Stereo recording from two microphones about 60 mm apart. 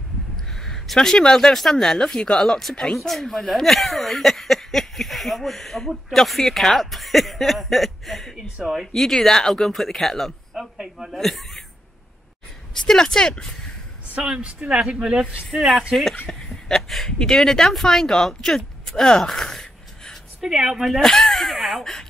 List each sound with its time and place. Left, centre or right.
0.6 s speech: centre
8.4 s speech: centre
8.9 s speech: centre
11.1 s speech: centre
12.8 s speech: centre
14.4 s speech: centre
15.9 s speech: centre
20.3 s speech: centre